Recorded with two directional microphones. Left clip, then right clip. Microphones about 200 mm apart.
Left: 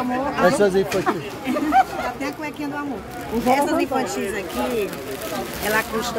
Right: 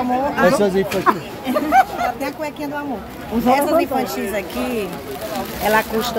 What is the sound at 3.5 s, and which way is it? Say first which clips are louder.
Speech: right 4 dB; 25° right (ahead or behind).